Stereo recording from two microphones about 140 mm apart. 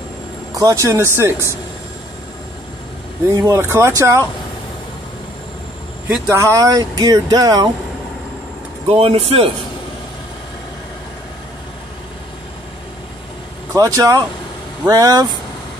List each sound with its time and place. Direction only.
0.6 s speech: 25° right (ahead or behind)
3.3 s speech: 20° right (ahead or behind)
6.0 s speech: 15° right (ahead or behind)
8.8 s speech: 45° right (ahead or behind)
13.7 s speech: 25° right (ahead or behind)